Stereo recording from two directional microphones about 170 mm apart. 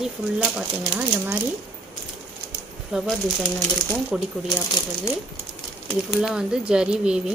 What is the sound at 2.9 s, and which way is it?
Speech, centre (ahead or behind).